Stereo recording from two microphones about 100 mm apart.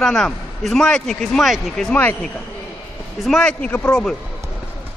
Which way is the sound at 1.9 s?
15° left (ahead or behind).